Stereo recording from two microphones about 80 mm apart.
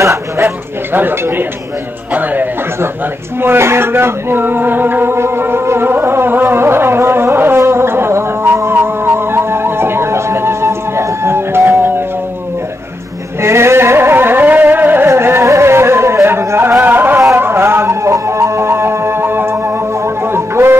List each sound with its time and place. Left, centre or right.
0.0 s speech: right
0.9 s speech: right
3.3 s music: right
13.4 s a sound: right
15.0 s carnatic music: right
16.8 s music: right